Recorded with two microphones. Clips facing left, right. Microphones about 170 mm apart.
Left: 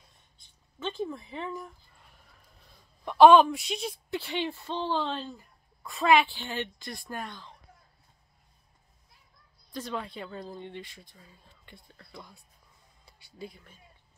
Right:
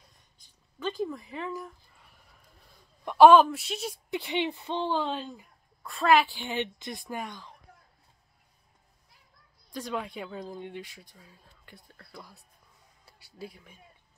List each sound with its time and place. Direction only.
0.8 s speech: 5° right (ahead or behind)
3.1 s speech: 10° right (ahead or behind)
5.8 s speech: centre (ahead or behind)
9.7 s speech: 10° right (ahead or behind)